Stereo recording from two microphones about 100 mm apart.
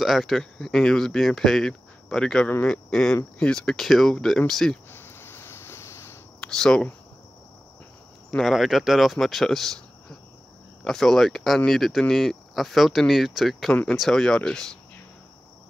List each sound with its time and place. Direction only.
0.0 s speech: centre (ahead or behind)
4.9 s a sound: 20° left (ahead or behind)
6.4 s speech: 5° left (ahead or behind)
8.3 s speech: 5° left (ahead or behind)